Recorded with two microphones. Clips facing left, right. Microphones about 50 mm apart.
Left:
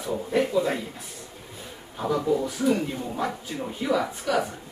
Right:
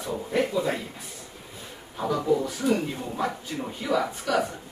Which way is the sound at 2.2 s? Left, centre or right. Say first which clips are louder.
Even; centre.